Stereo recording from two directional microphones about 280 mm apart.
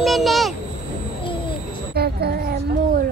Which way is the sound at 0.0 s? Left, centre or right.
Centre.